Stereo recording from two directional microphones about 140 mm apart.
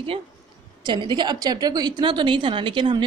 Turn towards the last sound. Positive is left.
turn(degrees=-35)  # may be behind; listen again after turning